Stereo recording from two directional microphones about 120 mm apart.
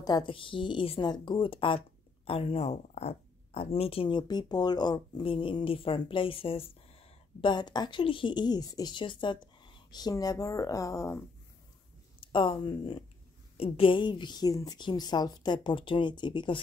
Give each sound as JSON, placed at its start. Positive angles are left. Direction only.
{"t": 0.0, "sound": "a woman's voice", "side_deg": 35}
{"t": 0.3, "sound": "speech", "side_deg": 45}
{"t": 7.4, "sound": "a woman's voice", "side_deg": 35}
{"t": 12.2, "sound": "a woman's voice", "side_deg": 45}